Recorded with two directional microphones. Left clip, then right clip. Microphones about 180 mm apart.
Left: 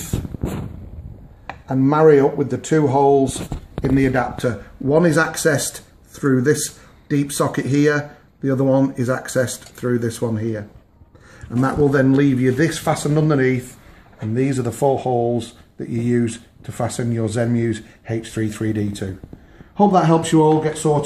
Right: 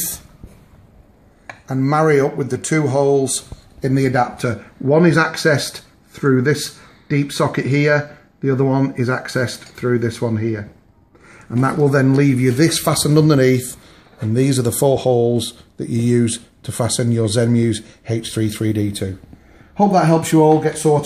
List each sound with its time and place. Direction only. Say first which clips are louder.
1.7 s speech: left 2 dB; 40° right (ahead or behind)
3.8 s speech: right 1 dB; 50° right (ahead or behind)
4.4 s speech: even; 30° right (ahead or behind)
4.9 s speech: right 2 dB; 40° right (ahead or behind)
11.6 s speech: right 1 dB; 55° right (ahead or behind); by 21.0 s 35° right (ahead or behind)